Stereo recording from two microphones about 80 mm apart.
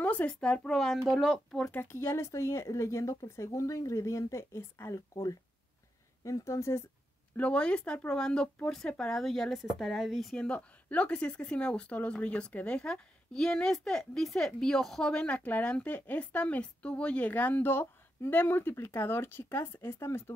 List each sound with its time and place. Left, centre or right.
0.0 s speech: centre
1.7 s speech: left
5.1 s speech: left
7.3 s speech: centre
10.3 s speech: centre; by 20.3 s left